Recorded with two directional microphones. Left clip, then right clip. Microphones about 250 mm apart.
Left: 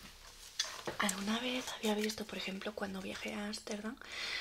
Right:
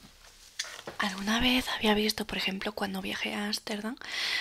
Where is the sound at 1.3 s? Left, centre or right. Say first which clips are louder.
Right 10 dB; right.